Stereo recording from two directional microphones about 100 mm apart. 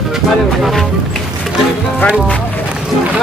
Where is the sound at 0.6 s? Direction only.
Centre (ahead or behind).